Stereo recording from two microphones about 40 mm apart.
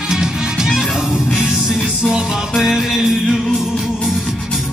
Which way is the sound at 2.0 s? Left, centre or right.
Centre.